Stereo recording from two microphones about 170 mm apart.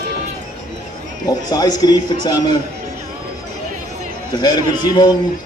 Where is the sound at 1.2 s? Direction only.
25° left (ahead or behind).